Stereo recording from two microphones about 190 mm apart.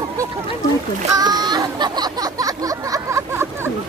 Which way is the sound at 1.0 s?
20° right (ahead or behind).